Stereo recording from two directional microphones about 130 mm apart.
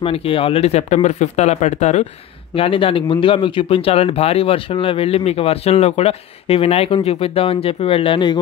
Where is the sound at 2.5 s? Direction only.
45° left (ahead or behind).